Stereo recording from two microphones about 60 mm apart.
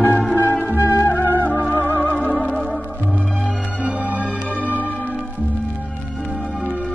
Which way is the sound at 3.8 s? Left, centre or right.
Right.